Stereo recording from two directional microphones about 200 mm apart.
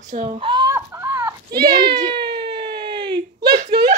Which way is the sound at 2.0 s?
25° right (ahead or behind).